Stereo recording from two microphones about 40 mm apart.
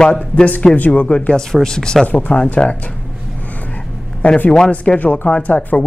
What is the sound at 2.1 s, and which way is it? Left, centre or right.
Speech, left.